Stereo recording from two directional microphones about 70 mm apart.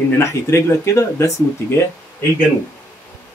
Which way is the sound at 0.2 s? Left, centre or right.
Left.